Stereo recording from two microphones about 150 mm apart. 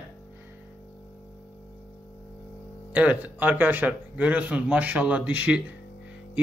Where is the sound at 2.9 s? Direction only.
10° right (ahead or behind).